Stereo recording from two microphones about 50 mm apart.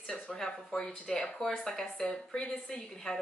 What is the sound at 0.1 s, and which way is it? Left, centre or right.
A woman's voice, centre.